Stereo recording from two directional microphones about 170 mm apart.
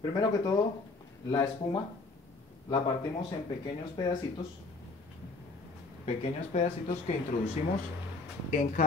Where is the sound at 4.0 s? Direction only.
20° left (ahead or behind).